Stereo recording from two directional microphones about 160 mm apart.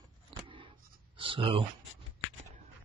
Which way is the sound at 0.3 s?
30° right (ahead or behind).